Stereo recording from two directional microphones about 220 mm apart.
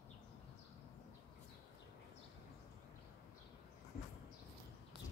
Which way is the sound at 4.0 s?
50° left (ahead or behind).